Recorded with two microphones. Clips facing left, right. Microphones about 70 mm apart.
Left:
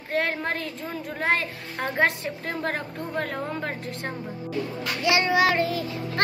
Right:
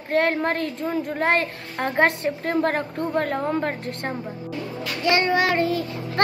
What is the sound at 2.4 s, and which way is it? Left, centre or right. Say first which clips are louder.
Speech: right 7 dB; centre.